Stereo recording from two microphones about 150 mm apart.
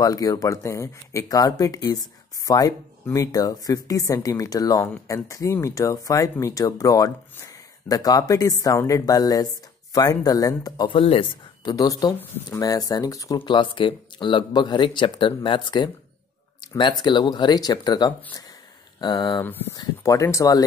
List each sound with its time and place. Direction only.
0.0 s speech: 25° left (ahead or behind)
11.0 s speech: 35° left (ahead or behind)
11.7 s speech: 25° left (ahead or behind)
13.4 s speech: 35° left (ahead or behind)
19.4 s speech: 15° left (ahead or behind)
19.7 s speech: 25° left (ahead or behind)